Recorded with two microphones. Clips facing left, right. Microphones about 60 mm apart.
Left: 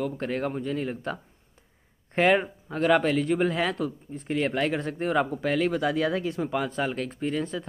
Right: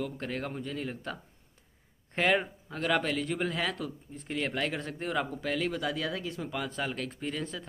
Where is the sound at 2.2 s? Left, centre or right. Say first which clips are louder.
Left 6 dB; left.